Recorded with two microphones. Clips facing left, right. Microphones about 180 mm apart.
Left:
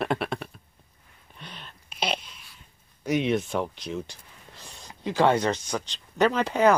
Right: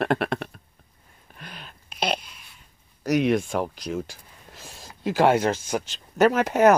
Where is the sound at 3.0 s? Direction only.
Centre (ahead or behind).